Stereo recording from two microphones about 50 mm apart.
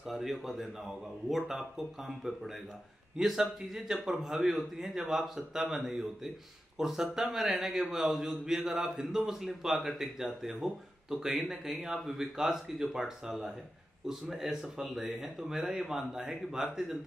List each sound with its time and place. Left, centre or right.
0.0 s a man's voice: centre